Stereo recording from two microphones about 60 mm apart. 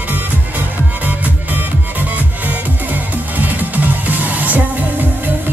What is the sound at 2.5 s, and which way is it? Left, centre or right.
Music, right.